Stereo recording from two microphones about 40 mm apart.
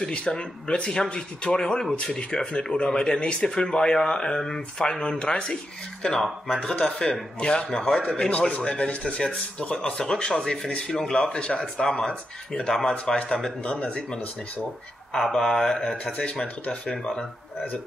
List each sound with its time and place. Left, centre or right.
0.0 s speech: centre
8.3 s speech: left
13.6 s speech: left
15.2 s speech: centre
16.0 s speech: left
16.9 s speech: centre